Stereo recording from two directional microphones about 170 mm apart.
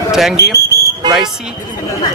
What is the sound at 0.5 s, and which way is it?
Fire alarm, 20° right (ahead or behind).